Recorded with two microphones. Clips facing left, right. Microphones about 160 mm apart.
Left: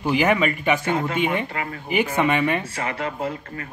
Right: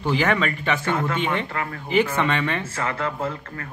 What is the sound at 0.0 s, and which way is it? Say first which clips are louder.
Speech: left 2 dB; 15° left (ahead or behind).